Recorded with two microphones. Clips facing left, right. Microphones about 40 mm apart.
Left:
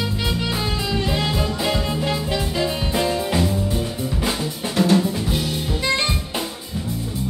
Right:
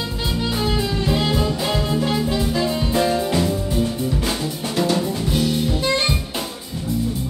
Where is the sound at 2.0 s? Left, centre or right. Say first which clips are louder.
Right 2 dB; left.